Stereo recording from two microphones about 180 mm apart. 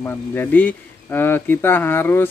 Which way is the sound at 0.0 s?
10° left (ahead or behind).